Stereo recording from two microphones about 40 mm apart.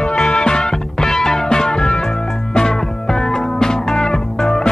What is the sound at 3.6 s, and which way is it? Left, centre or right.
Music, centre.